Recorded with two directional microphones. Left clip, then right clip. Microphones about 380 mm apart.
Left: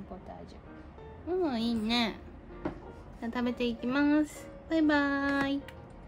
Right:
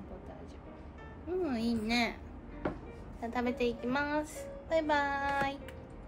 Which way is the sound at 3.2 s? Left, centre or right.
Left.